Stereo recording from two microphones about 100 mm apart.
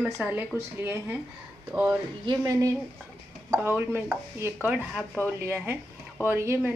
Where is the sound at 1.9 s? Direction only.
35° right (ahead or behind).